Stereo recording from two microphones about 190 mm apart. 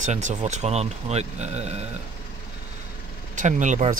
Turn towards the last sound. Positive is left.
turn(degrees=-40)  # may be behind; listen again after turning